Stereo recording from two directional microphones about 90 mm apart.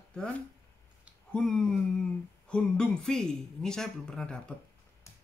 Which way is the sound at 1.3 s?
10° left (ahead or behind).